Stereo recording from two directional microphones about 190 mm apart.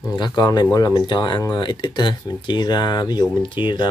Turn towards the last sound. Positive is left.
turn(degrees=25)  # may be behind; listen again after turning